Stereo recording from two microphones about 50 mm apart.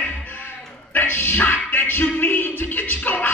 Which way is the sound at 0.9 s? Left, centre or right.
Left.